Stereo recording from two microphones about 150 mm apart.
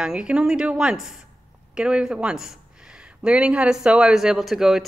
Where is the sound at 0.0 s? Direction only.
5° right (ahead or behind).